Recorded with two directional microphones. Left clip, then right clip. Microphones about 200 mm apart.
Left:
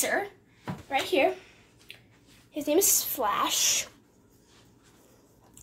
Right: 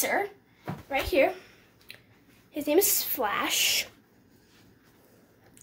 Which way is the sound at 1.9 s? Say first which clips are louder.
Even; 15° right (ahead or behind).